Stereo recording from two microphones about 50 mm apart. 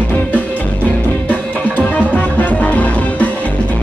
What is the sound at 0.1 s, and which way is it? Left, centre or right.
Music, left.